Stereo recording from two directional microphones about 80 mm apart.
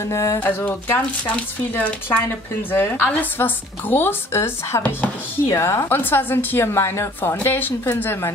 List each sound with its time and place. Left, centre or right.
0.0 s a woman's voice: left
0.4 s a woman's voice: left
1.2 s speech: centre
2.0 s a woman's voice: left